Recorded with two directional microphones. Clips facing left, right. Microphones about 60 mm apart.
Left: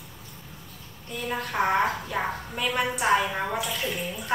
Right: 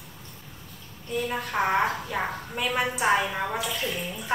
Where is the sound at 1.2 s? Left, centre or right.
Centre.